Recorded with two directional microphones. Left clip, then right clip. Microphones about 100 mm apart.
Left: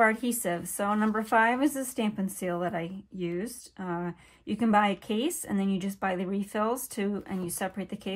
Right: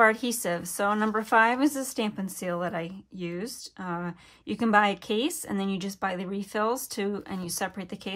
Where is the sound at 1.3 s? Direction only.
30° right (ahead or behind).